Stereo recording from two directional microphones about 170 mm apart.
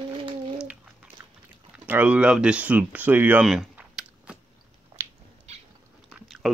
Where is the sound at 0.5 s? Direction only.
5° right (ahead or behind).